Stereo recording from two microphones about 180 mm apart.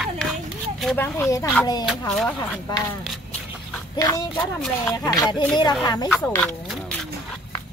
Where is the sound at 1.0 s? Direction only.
15° left (ahead or behind).